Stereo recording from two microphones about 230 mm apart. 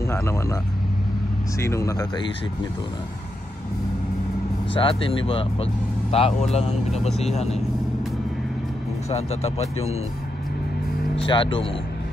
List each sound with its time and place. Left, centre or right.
0.1 s speech: centre
1.6 s speech: centre
4.7 s speech: left
9.1 s speech: left
11.2 s speech: left